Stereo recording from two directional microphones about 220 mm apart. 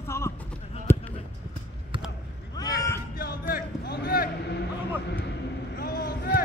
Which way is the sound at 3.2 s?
40° left (ahead or behind).